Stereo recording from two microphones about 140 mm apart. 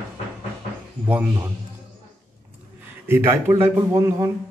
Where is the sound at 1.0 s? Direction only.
20° right (ahead or behind).